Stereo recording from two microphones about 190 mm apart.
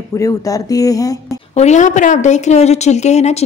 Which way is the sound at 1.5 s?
35° left (ahead or behind).